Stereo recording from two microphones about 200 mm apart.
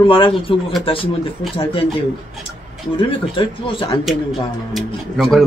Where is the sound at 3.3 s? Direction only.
25° left (ahead or behind).